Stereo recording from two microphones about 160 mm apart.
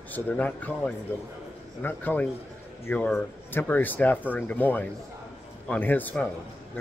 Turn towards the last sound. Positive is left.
turn(degrees=10)  # may be behind; listen again after turning